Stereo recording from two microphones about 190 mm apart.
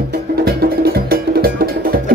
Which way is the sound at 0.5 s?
55° right (ahead or behind).